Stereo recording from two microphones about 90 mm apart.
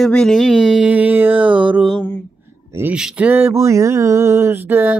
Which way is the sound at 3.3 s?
30° right (ahead or behind).